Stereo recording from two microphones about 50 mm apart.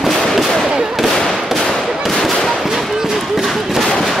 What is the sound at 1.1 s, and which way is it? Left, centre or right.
Gunshot, centre.